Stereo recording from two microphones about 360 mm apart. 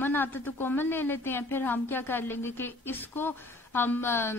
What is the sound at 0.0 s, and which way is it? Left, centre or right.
A woman's voice, centre.